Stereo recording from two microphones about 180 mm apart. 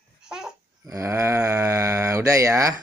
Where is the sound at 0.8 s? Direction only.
15° right (ahead or behind).